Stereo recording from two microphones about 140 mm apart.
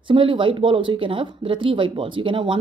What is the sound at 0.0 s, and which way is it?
A woman's voice, 35° right (ahead or behind).